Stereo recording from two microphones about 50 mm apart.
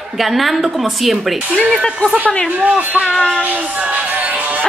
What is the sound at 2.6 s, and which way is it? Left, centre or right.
Speech, right.